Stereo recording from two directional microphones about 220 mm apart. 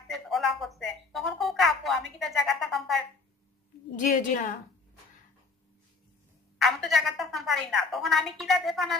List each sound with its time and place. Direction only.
0.1 s a sound: centre (ahead or behind)
3.9 s a woman's voice: 35° left (ahead or behind)
6.6 s a woman's voice: centre (ahead or behind)